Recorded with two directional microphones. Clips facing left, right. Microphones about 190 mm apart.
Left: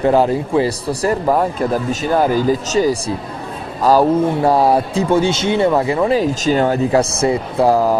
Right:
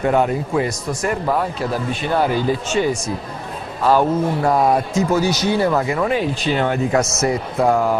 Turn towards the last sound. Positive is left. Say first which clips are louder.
# left 3 dB
turn(degrees=35)  # may be behind; listen again after turning